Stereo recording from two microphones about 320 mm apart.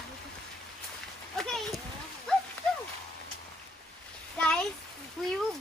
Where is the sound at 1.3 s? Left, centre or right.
Centre.